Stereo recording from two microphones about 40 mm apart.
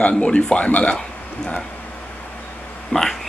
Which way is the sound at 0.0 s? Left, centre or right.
Left.